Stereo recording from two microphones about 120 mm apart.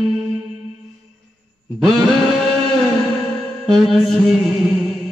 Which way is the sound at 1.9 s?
Centre (ahead or behind).